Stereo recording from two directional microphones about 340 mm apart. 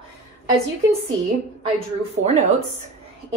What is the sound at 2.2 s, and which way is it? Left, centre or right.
Speech, right.